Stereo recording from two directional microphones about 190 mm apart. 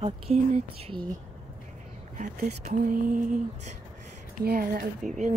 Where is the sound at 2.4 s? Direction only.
35° right (ahead or behind).